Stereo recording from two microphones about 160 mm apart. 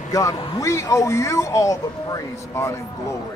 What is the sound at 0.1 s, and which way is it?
A man's voice, 20° left (ahead or behind).